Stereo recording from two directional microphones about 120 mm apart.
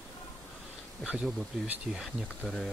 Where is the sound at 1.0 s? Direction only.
10° right (ahead or behind).